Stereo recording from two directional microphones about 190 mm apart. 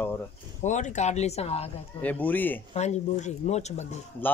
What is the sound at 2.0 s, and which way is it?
Speech, 10° left (ahead or behind).